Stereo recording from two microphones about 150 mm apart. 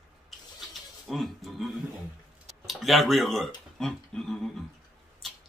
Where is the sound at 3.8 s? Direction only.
5° left (ahead or behind).